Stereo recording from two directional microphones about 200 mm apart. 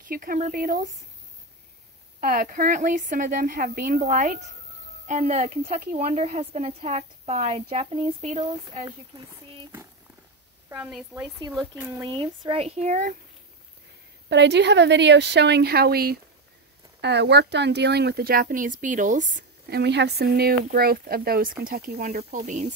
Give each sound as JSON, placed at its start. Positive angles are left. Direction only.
{"t": 0.1, "sound": "speech", "side_deg": -45}
{"t": 2.1, "sound": "speech", "side_deg": -45}
{"t": 10.7, "sound": "speech", "side_deg": -5}
{"t": 11.7, "sound": "speech", "side_deg": -15}
{"t": 12.2, "sound": "speech", "side_deg": -30}
{"t": 14.3, "sound": "speech", "side_deg": -60}
{"t": 19.8, "sound": "speech", "side_deg": -55}
{"t": 22.1, "sound": "speech", "side_deg": -35}